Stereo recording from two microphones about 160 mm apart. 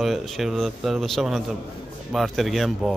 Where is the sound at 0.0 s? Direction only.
Centre (ahead or behind).